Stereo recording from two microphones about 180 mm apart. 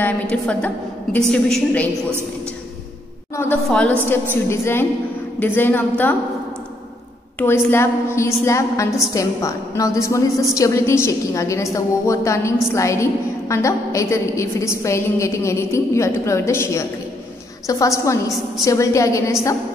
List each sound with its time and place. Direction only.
0.0 s a woman's voice: 5° left (ahead or behind)
3.6 s a woman's voice: 5° left (ahead or behind)
7.3 s a woman's voice: 15° left (ahead or behind)